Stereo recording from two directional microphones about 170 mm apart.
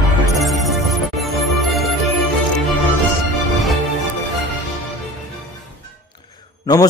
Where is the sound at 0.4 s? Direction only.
Centre (ahead or behind).